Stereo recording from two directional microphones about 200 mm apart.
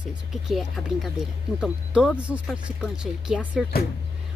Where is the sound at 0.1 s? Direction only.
Centre (ahead or behind).